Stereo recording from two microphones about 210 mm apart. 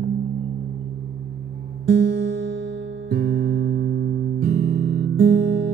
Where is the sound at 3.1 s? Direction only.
50° right (ahead or behind).